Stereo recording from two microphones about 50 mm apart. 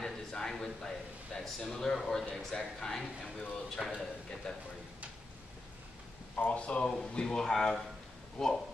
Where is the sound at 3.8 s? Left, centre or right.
Centre.